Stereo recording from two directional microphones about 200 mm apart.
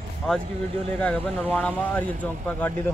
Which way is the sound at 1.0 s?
5° left (ahead or behind).